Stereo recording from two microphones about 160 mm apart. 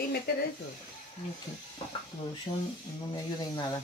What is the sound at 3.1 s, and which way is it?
Speech, 30° left (ahead or behind).